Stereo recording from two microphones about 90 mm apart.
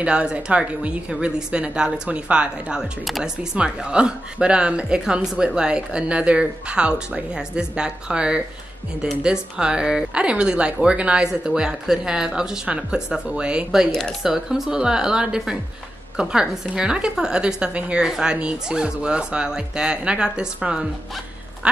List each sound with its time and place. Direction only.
0.0 s speech: 10° right (ahead or behind)